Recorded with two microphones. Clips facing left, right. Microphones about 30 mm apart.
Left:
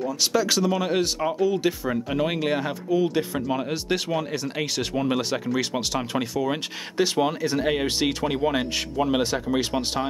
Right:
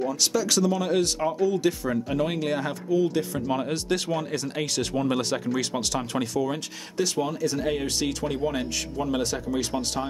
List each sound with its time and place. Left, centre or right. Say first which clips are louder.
0.2 s speech: left 3 dB; centre
3.4 s speech: even; centre